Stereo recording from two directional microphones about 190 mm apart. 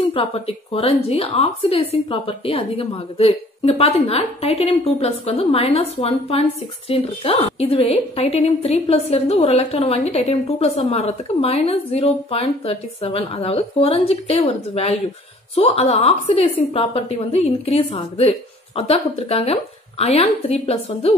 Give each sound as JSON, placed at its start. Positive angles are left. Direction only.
{"t": 0.1, "sound": "a woman's voice", "side_deg": 30}